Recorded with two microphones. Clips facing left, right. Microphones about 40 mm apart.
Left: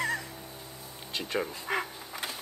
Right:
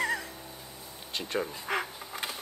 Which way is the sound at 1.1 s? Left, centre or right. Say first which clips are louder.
Even; centre.